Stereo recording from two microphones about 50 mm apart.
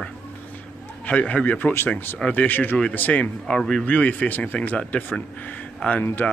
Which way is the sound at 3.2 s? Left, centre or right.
Centre.